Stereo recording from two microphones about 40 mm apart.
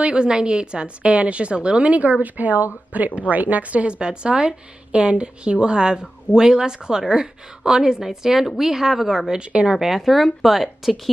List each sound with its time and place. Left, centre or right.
0.0 s a woman's voice: right
1.9 s a woman's voice: right; by 9.3 s centre
9.3 s a woman's voice: right
9.7 s speech: centre